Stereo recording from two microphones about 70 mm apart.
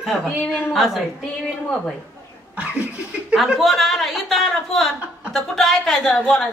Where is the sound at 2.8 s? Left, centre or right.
Centre.